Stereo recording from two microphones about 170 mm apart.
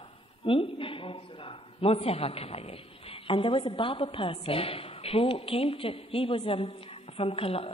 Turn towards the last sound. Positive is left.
turn(degrees=35)  # may be behind; listen again after turning